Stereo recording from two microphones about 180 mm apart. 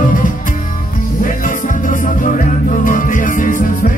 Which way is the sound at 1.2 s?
50° left (ahead or behind).